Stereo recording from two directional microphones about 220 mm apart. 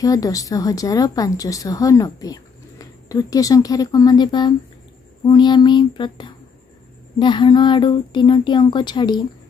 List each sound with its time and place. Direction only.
0.0 s speech: 15° left (ahead or behind)